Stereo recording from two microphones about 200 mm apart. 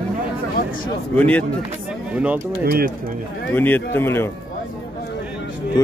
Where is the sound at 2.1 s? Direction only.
5° right (ahead or behind).